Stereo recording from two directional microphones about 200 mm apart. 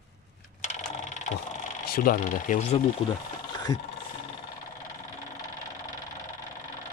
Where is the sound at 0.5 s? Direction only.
35° left (ahead or behind).